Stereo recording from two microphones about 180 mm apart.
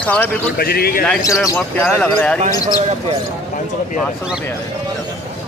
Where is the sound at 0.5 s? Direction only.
60° left (ahead or behind).